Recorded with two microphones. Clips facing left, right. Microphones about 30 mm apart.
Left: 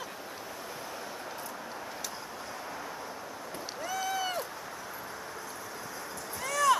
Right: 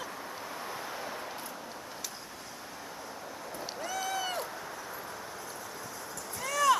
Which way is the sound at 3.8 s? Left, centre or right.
Centre.